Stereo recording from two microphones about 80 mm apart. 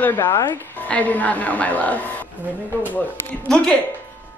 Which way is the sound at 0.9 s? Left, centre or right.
Centre.